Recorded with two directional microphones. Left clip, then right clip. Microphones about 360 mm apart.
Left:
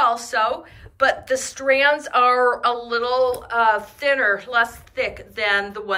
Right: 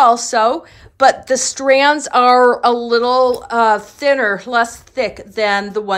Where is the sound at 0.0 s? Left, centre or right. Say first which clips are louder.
Right 8 dB; centre.